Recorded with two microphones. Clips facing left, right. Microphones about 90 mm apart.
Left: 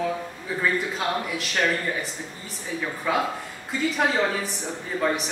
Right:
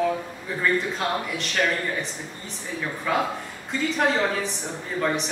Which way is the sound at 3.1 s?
5° left (ahead or behind).